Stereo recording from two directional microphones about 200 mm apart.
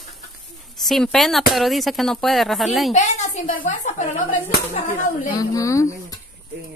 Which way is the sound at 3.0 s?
35° left (ahead or behind).